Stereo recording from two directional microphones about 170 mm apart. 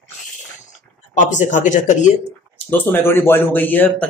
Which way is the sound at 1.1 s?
45° left (ahead or behind).